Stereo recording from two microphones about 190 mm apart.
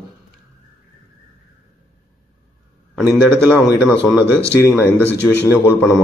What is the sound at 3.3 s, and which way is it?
Speech, 10° right (ahead or behind).